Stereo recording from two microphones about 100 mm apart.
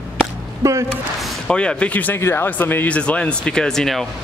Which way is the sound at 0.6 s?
30° right (ahead or behind).